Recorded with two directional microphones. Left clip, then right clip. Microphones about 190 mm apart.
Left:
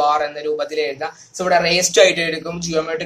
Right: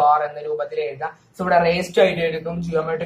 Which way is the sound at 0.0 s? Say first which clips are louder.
Even; 55° left (ahead or behind).